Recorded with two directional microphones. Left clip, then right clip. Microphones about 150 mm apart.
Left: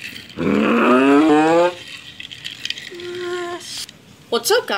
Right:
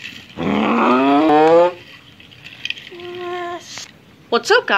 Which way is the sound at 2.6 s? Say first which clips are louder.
Right 3 dB; 15° right (ahead or behind).